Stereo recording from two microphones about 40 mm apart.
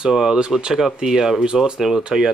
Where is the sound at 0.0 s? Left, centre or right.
Centre.